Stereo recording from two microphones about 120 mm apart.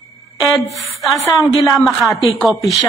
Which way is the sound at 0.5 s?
25° left (ahead or behind).